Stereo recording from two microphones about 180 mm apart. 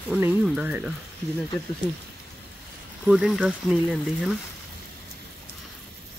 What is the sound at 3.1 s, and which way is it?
Speech, 5° right (ahead or behind).